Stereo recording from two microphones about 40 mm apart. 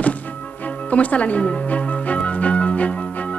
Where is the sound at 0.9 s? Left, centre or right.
Left.